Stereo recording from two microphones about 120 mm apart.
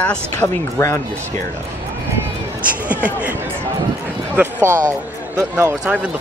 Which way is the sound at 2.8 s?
10° right (ahead or behind).